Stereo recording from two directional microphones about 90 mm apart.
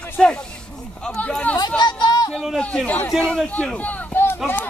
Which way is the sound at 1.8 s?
55° left (ahead or behind).